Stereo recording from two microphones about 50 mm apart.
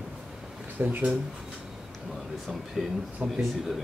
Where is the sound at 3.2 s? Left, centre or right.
Right.